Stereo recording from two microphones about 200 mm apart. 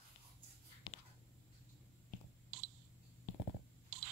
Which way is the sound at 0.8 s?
20° left (ahead or behind).